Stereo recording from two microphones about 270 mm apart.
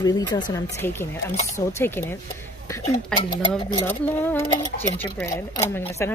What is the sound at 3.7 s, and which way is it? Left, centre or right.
Speech, centre.